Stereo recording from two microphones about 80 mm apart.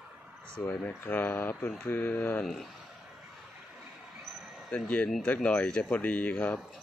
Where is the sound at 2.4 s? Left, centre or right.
Centre.